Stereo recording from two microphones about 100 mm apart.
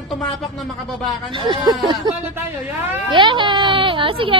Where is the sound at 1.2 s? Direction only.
55° right (ahead or behind).